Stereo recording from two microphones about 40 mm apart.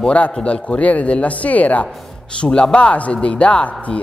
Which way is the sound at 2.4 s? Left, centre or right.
Left.